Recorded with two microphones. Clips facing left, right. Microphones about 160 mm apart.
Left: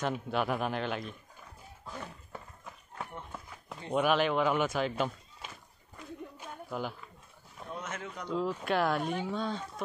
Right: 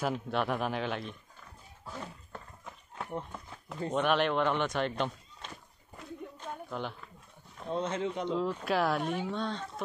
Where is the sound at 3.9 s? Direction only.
Centre (ahead or behind).